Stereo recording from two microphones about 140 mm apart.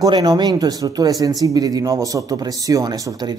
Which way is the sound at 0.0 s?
30° right (ahead or behind).